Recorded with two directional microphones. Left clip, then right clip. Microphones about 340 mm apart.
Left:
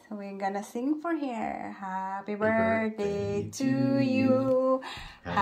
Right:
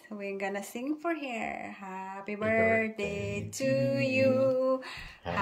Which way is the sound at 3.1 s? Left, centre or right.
Left.